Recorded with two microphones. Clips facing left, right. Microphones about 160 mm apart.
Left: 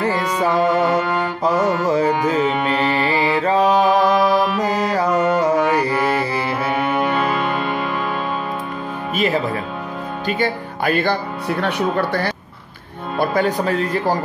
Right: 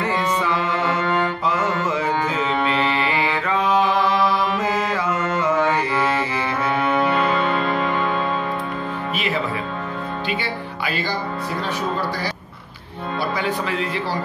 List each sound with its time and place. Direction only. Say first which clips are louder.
0.4 s music: left 6 dB; 40° left (ahead or behind)
0.8 s music: left 2 dB; 10° left (ahead or behind)
1.4 s music: left 4 dB; 40° left (ahead or behind)
6.7 s music: even; 10° left (ahead or behind)
9.1 s music: left 7 dB; 40° left (ahead or behind)
10.2 s speech: left 5 dB; 45° left (ahead or behind); by 12.3 s 60° left (ahead or behind)
13.2 s speech: left 6 dB; 45° left (ahead or behind)